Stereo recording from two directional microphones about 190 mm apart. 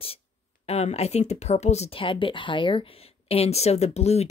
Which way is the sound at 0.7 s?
35° left (ahead or behind).